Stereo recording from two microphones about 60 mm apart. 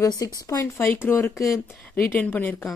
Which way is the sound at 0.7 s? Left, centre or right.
Left.